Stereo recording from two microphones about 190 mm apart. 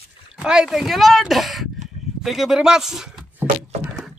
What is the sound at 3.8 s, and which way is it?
Rowboat, 5° right (ahead or behind).